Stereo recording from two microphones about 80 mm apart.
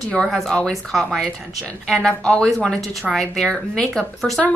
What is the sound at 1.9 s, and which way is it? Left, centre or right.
Speech, centre.